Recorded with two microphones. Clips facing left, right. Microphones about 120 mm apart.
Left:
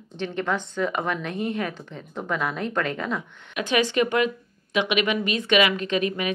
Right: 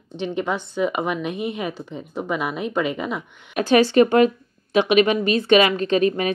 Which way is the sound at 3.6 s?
35° right (ahead or behind).